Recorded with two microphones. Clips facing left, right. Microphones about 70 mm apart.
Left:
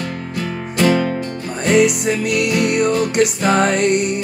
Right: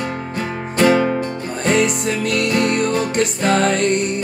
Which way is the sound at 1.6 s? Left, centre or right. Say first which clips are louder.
Left 3 dB; centre.